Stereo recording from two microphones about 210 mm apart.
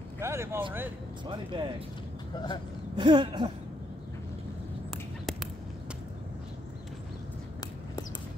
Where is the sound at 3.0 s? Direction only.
25° right (ahead or behind).